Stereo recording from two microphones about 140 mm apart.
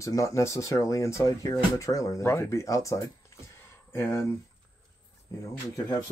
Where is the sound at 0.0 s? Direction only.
25° left (ahead or behind).